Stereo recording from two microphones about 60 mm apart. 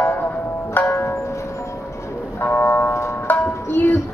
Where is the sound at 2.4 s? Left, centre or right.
Left.